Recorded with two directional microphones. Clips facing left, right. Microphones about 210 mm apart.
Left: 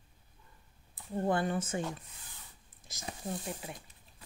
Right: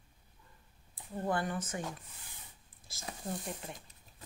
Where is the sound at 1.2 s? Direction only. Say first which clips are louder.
Left 3 dB; 25° left (ahead or behind).